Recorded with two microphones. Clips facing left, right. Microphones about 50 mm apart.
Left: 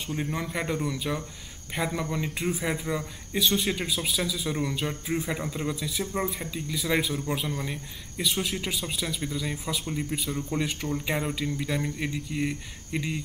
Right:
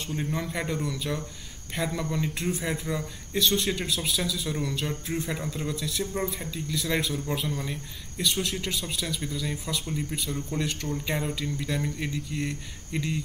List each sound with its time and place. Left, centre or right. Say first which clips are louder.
0.0 s speech: even; centre